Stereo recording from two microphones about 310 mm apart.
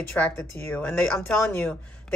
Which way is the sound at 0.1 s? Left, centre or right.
Centre.